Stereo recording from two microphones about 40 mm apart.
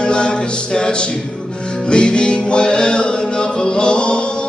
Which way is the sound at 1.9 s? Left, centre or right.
Left.